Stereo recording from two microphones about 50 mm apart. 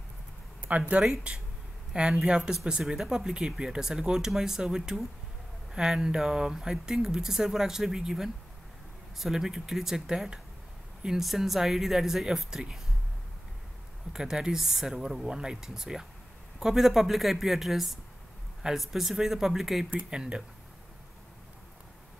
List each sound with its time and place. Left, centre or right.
0.7 s speech: right; by 12.8 s centre
14.1 s a woman's voice: centre
20.1 s speech: centre